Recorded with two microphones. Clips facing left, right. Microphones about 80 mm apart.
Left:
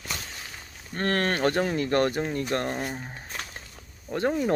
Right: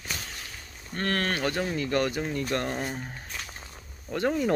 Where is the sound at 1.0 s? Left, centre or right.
Left.